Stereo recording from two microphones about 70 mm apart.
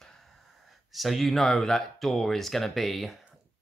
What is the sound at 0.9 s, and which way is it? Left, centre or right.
Speech, centre.